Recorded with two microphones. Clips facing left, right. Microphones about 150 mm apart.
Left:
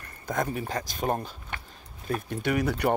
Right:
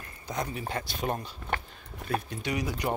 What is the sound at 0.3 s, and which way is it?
Speech, 45° left (ahead or behind).